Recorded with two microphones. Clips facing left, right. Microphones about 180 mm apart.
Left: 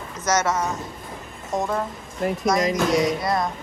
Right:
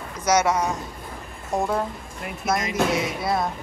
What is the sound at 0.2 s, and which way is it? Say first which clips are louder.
Speech: right 2 dB; 10° right (ahead or behind).